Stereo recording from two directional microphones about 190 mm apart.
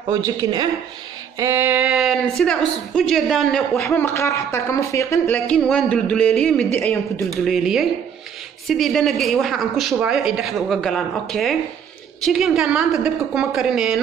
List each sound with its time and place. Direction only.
0.1 s a man's voice: 15° right (ahead or behind)